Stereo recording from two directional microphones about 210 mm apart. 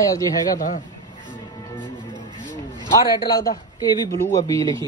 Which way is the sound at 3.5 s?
15° left (ahead or behind).